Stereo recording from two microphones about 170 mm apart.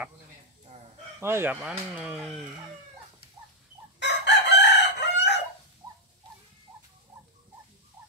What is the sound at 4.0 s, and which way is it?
Chicken, 90° left.